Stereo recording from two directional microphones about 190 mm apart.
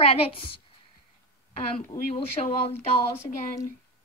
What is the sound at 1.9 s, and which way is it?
Speech, 20° left (ahead or behind).